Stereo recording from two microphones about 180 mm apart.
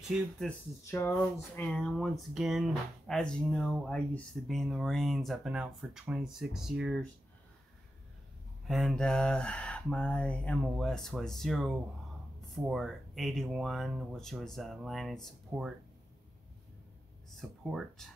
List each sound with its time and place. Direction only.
0.1 s speech: centre (ahead or behind)
0.8 s speech: 15° left (ahead or behind)
1.6 s speech: 5° left (ahead or behind)
8.6 s speech: centre (ahead or behind)
17.4 s speech: centre (ahead or behind)